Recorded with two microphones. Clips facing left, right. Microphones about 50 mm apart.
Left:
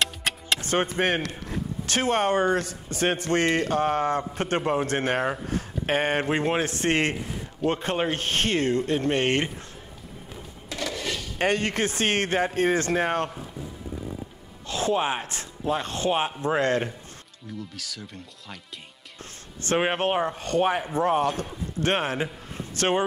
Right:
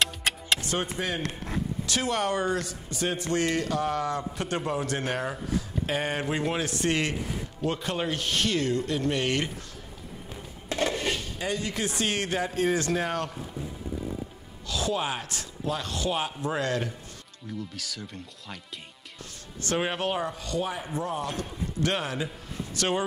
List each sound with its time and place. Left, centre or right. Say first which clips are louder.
0.0 s music: even; centre
0.6 s a sound: left 5 dB; left
0.9 s speech: left 6 dB; left
5.5 s a sound: left 3 dB; left
6.2 s speech: left 4 dB; left
10.7 s a sound: right 3 dB; right
11.3 s speech: left 6 dB; left
14.7 s speech: left 4 dB; left
17.5 s speech: right 1 dB; centre
19.6 s speech: left 4 dB; left